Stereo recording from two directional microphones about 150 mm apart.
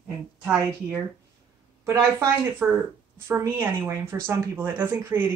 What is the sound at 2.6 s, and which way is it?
Speech, 10° right (ahead or behind).